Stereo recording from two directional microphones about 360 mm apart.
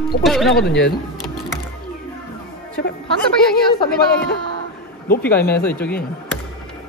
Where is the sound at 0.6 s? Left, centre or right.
Left.